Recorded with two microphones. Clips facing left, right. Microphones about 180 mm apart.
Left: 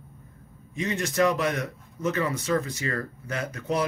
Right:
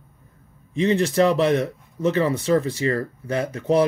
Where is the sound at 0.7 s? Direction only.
30° right (ahead or behind).